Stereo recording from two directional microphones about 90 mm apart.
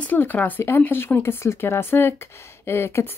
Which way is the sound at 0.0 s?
20° left (ahead or behind).